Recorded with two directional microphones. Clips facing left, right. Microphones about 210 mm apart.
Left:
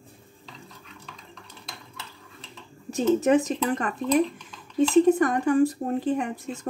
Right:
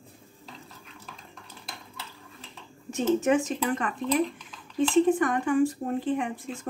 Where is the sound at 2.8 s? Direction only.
35° left (ahead or behind).